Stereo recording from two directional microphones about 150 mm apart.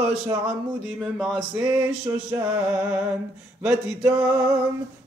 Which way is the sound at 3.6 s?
10° right (ahead or behind).